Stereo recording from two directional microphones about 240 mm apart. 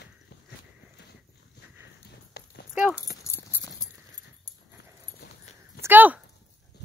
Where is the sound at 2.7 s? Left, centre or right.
Centre.